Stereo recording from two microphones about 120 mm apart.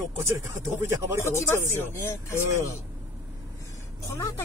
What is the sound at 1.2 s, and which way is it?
Speech, 20° left (ahead or behind).